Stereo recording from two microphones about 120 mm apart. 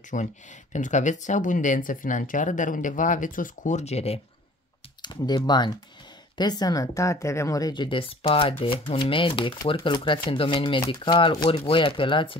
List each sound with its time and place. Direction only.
0.1 s speech: 90° left; by 4.2 s 60° left (ahead or behind)
5.0 s speech: 35° left (ahead or behind)